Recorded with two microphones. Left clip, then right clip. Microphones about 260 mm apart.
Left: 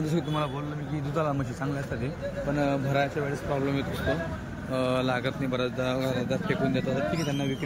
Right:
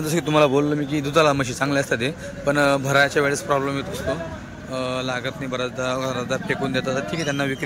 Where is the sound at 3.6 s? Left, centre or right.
Centre.